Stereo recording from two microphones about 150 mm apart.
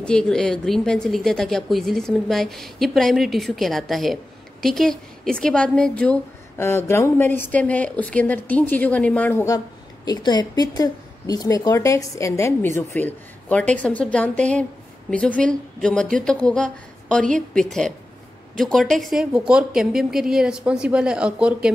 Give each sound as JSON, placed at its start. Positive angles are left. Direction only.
{"t": 0.0, "sound": "a woman's voice", "side_deg": 5}
{"t": 6.6, "sound": "speech", "side_deg": 15}
{"t": 10.0, "sound": "a woman's voice", "side_deg": 30}